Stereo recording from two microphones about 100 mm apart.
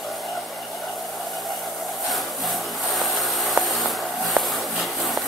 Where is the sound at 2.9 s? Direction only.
Centre (ahead or behind).